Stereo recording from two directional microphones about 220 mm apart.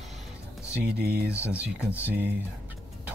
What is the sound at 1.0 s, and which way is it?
Speech, 45° right (ahead or behind).